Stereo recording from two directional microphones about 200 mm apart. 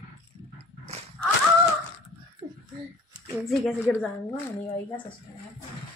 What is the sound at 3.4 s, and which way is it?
Speech, centre (ahead or behind).